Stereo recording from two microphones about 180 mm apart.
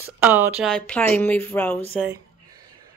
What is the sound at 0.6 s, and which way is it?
Speech, 5° left (ahead or behind).